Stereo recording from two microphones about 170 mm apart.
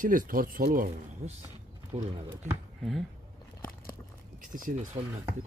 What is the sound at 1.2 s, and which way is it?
Speech, 40° right (ahead or behind).